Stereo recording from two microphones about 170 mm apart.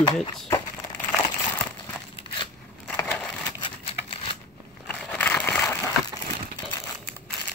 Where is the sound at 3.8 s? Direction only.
30° left (ahead or behind).